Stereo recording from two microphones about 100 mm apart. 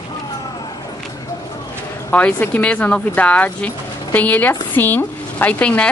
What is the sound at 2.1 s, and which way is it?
A woman's voice, 15° left (ahead or behind).